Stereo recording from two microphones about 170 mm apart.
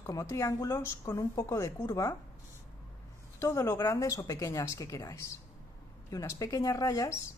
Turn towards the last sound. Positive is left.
turn(degrees=20)  # may be behind; listen again after turning